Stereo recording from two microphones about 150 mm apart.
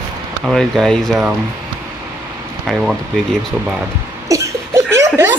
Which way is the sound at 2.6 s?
Centre (ahead or behind).